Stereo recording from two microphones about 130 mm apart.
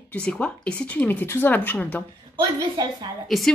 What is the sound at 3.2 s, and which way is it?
Speech, centre (ahead or behind).